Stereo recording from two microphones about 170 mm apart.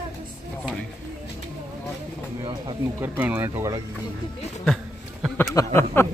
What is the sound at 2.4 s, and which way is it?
Speech, 25° right (ahead or behind).